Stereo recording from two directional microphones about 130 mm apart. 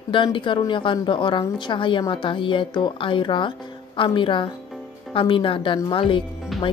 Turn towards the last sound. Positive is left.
turn(degrees=0)  # may be behind; listen again after turning